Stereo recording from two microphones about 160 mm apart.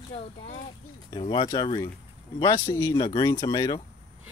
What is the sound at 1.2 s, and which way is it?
Speech, 30° left (ahead or behind).